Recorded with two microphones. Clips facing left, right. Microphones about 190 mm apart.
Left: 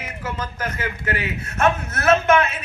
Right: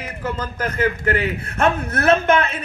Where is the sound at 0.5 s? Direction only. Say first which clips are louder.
Right 6 dB; 50° right (ahead or behind).